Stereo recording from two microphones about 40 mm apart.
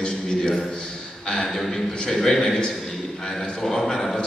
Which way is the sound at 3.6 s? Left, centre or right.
Centre.